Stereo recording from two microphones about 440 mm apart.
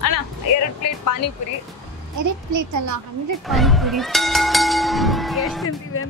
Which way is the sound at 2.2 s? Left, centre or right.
Right.